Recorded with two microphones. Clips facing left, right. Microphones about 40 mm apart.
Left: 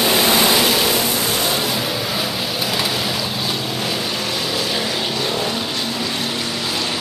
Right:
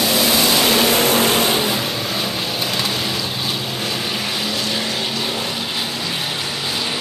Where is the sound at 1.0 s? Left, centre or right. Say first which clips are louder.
Right 5 dB; right.